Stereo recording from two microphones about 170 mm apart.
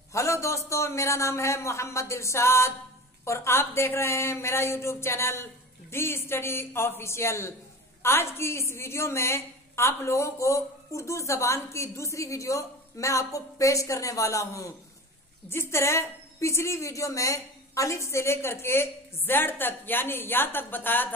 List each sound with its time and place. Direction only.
0.1 s a man's voice: 15° left (ahead or behind)